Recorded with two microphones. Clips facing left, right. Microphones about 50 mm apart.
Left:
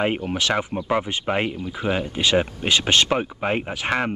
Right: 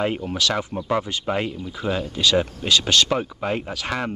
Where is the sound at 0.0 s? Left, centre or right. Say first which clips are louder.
Left 1 dB; left.